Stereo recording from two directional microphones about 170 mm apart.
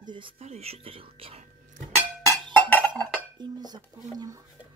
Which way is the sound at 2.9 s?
25° right (ahead or behind).